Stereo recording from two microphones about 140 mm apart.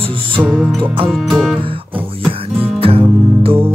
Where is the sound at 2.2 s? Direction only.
45° right (ahead or behind).